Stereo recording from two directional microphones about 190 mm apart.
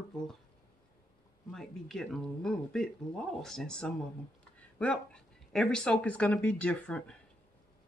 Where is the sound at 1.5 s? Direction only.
Centre (ahead or behind).